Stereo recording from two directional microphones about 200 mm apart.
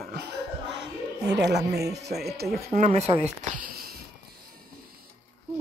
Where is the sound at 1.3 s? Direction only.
60° right (ahead or behind).